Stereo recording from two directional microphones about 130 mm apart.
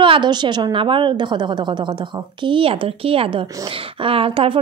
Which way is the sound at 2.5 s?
45° right (ahead or behind).